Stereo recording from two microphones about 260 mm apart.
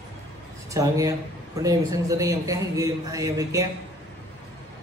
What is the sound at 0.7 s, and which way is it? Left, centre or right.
A man's voice, centre.